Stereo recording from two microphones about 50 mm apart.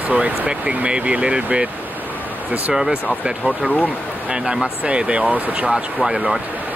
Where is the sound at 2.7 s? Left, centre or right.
Centre.